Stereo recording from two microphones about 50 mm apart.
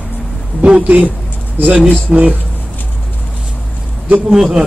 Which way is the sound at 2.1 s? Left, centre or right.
Centre.